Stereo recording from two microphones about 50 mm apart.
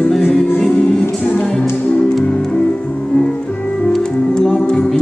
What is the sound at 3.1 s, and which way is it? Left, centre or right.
Music, left.